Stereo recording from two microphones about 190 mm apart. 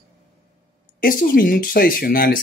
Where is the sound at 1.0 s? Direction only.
50° left (ahead or behind).